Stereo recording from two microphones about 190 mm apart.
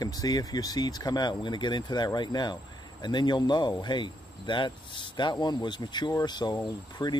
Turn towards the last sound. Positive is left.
turn(degrees=20)  # may be behind; listen again after turning